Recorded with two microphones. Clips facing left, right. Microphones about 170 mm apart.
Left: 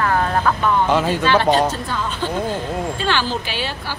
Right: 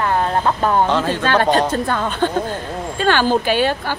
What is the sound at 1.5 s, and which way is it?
A woman's voice, 55° right (ahead or behind).